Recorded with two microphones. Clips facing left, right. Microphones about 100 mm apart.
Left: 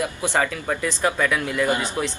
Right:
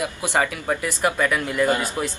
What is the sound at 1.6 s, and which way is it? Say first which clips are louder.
Speech: right 3 dB; 20° left (ahead or behind).